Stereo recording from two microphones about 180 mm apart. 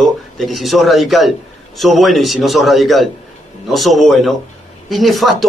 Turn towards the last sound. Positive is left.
turn(degrees=0)  # may be behind; listen again after turning